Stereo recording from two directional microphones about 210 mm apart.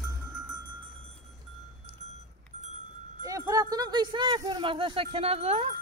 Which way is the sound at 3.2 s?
15° right (ahead or behind).